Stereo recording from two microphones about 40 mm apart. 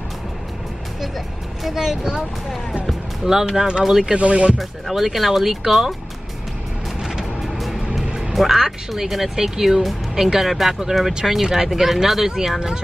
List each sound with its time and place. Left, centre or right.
1.6 s speech: centre
3.3 s speech: centre; by 4.6 s right
4.6 s speech: centre
7.0 s vehicle: centre
8.3 s speech: centre